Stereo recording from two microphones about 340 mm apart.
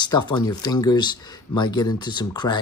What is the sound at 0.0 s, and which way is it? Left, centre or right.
Speech, centre.